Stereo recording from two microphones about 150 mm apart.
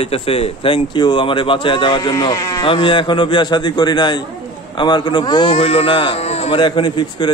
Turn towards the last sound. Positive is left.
turn(degrees=30)  # may be behind; listen again after turning